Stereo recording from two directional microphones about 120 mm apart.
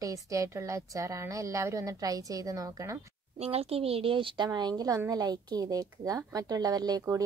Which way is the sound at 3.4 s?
55° right (ahead or behind).